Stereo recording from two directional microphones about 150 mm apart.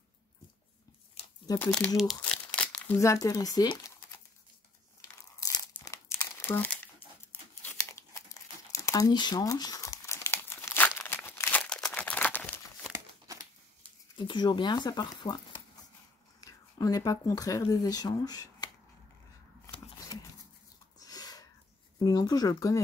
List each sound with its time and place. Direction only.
1.2 s a sound: 40° left (ahead or behind)
1.6 s speech: 5° left (ahead or behind)
2.0 s crumpling: 5° left (ahead or behind)
3.0 s speech: 20° left (ahead or behind)
5.4 s crumpling: 25° left (ahead or behind)
8.7 s crumpling: 20° left (ahead or behind)
12.9 s crumpling: 20° right (ahead or behind)
14.1 s speech: 30° left (ahead or behind)
19.6 s shuffling cards: 25° left (ahead or behind)
21.0 s a sound: 25° left (ahead or behind)
22.0 s speech: 25° left (ahead or behind)